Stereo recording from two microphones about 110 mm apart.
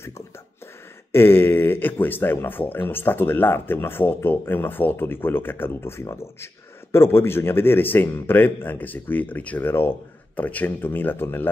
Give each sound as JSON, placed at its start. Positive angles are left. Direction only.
{"t": 1.1, "sound": "speech", "side_deg": 20}